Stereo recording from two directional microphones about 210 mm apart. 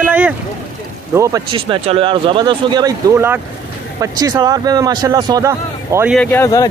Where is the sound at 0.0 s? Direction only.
5° right (ahead or behind).